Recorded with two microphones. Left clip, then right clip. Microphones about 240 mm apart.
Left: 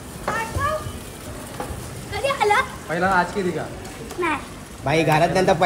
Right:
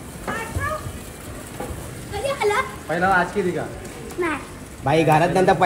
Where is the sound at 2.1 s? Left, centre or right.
Centre.